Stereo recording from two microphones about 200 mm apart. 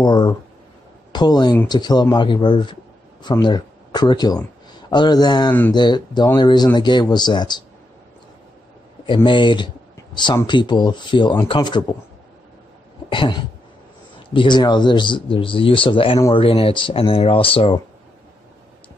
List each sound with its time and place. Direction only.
0.0 s speech: 20° left (ahead or behind)
9.0 s speech: 25° left (ahead or behind)
13.1 s speech: 25° left (ahead or behind)